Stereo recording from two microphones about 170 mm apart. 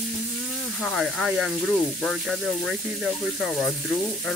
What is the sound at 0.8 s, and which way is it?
Speech, centre (ahead or behind).